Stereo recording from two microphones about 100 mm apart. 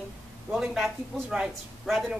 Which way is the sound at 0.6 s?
5° right (ahead or behind).